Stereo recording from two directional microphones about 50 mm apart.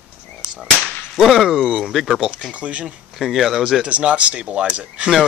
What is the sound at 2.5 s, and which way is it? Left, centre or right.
Speech, right.